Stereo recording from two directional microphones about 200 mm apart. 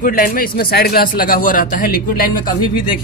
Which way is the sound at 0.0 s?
45° left (ahead or behind).